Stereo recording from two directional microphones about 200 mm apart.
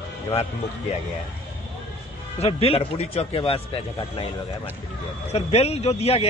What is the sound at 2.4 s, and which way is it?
A man's voice, 30° left (ahead or behind).